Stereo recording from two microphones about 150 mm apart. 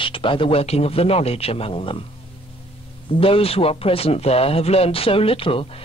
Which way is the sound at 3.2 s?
40° left (ahead or behind).